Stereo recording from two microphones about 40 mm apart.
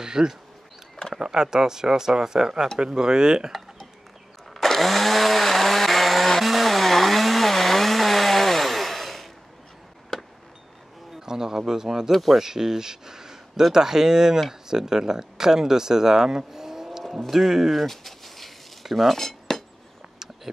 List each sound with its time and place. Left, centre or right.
0.0 s speech: centre
4.6 s chainsaw: centre
11.1 s a sound: centre
12.1 s speech: centre
12.4 s speech: centre
17.8 s a sound: centre
19.1 s cutlery: centre